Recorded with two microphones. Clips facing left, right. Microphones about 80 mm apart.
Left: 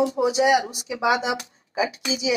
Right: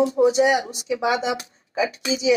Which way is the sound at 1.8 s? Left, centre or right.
Right.